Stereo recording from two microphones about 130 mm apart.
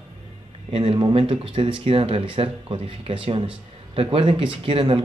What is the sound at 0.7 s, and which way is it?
Speech, 45° right (ahead or behind).